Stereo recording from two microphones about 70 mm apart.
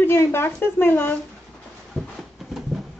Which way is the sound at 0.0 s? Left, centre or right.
Left.